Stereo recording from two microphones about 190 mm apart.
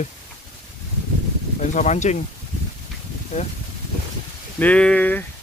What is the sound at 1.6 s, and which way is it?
Speech, 40° left (ahead or behind).